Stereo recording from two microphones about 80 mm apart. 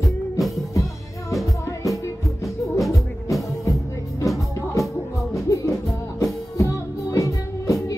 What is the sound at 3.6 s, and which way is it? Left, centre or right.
Music, left.